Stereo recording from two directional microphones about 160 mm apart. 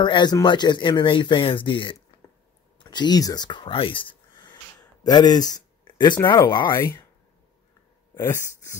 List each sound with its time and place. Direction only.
0.0 s speech: 30° left (ahead or behind)
8.1 s speech: 20° left (ahead or behind)